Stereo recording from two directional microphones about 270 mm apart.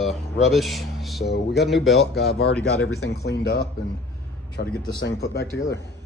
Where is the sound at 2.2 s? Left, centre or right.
Left.